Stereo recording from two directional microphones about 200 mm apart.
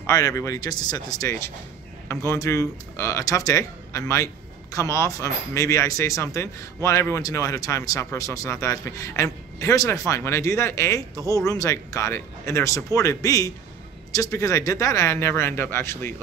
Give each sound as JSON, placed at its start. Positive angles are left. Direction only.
{"t": 0.0, "sound": "speech", "side_deg": 15}